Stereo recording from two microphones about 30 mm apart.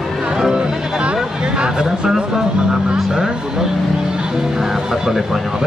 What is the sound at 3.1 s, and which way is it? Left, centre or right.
Speech, right.